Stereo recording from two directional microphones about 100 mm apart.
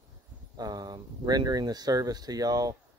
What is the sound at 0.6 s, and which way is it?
Speech, 45° right (ahead or behind).